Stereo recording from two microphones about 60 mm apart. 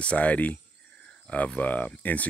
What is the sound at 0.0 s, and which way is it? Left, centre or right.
Speech, left.